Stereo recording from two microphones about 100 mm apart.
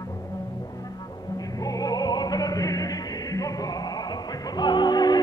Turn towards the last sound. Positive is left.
turn(degrees=45)  # may be behind; listen again after turning